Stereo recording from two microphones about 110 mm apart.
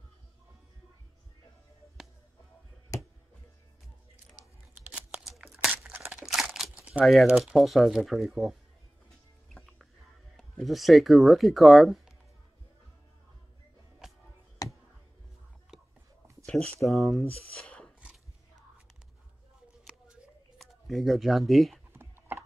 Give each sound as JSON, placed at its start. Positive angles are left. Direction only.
{"t": 2.9, "sound": "a sound", "side_deg": 30}
{"t": 4.7, "sound": "a sound", "side_deg": -10}
{"t": 5.6, "sound": "crumpling", "side_deg": -10}
{"t": 6.1, "sound": "crunch", "side_deg": -5}
{"t": 7.1, "sound": "speech", "side_deg": 0}
{"t": 10.3, "sound": "speech", "side_deg": 0}
{"t": 14.6, "sound": "a sound", "side_deg": 35}
{"t": 15.7, "sound": "whispering", "side_deg": -5}
{"t": 16.4, "sound": "a sound", "side_deg": 10}
{"t": 16.8, "sound": "speech", "side_deg": 0}
{"t": 17.6, "sound": "cough", "side_deg": 10}
{"t": 20.5, "sound": "speech", "side_deg": 0}